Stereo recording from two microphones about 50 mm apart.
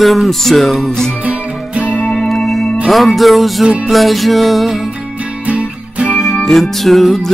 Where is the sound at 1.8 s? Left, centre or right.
Left.